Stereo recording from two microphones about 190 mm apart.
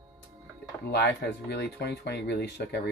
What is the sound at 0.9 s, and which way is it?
Speech, 60° left (ahead or behind).